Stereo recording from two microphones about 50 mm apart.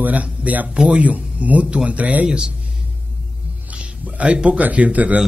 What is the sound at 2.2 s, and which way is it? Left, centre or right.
Speech, centre.